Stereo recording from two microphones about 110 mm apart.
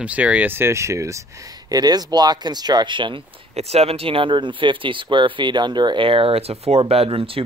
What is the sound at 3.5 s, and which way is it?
Speech, 70° right (ahead or behind).